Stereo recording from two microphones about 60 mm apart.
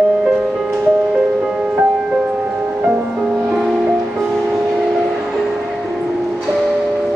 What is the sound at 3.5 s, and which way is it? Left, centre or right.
Music, centre.